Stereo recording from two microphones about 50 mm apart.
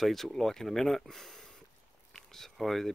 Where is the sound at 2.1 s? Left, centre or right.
Centre.